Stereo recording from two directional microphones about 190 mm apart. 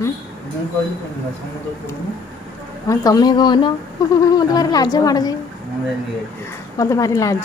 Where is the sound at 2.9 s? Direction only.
20° left (ahead or behind).